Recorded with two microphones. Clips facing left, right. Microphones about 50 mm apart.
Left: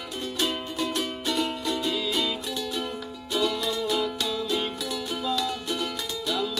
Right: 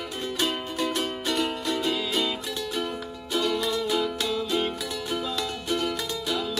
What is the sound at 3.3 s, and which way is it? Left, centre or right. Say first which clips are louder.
Music: right 1 dB; right.